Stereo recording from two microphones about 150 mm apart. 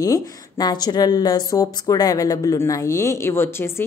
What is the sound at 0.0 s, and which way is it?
Speech, 25° left (ahead or behind).